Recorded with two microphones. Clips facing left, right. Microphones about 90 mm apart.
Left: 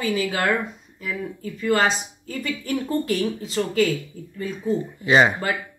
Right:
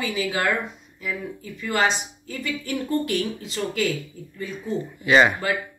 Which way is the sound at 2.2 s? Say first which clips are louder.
Left 2 dB; 35° left (ahead or behind).